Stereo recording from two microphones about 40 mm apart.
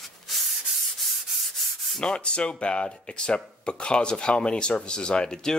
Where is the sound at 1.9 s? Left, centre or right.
Centre.